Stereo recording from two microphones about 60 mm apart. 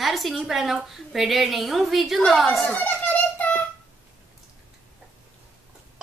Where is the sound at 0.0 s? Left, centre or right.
Centre.